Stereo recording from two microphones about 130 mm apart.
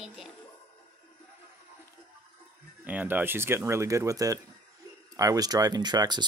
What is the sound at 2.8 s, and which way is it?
Speech, 15° right (ahead or behind).